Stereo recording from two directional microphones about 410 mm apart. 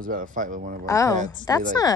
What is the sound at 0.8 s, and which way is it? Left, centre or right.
Speech, centre.